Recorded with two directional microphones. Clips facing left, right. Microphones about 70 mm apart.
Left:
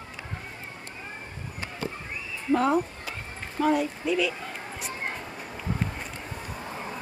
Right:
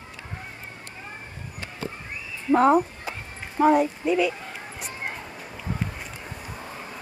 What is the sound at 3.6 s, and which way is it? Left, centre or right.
Speech, right.